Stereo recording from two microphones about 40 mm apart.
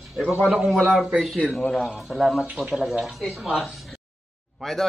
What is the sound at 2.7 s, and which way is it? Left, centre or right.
Speech, centre.